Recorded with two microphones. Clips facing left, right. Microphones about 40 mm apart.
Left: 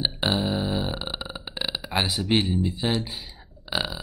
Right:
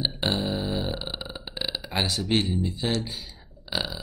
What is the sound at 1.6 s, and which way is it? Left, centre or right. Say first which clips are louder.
Speech: left 2 dB; centre.